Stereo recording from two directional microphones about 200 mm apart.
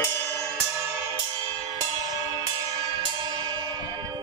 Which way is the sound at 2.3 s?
20° right (ahead or behind).